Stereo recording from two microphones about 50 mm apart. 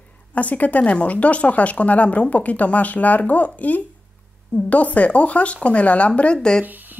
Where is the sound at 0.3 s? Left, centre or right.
Left.